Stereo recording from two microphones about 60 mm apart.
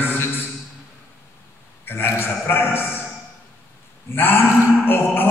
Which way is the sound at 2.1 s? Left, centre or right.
Left.